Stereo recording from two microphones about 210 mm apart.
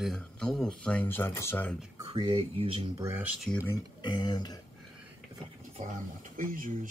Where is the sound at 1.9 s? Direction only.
20° right (ahead or behind).